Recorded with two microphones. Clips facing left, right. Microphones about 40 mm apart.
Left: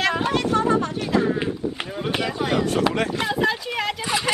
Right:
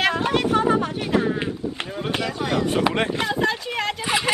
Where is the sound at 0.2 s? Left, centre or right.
Centre.